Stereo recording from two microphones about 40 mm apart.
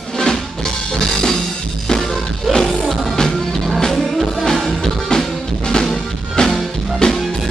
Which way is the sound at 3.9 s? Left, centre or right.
Centre.